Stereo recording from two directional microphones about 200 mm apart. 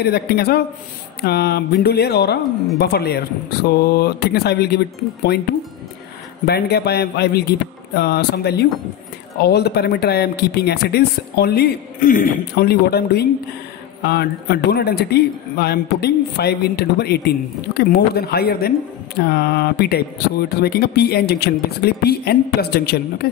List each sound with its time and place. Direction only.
0.0 s speech: 50° left (ahead or behind)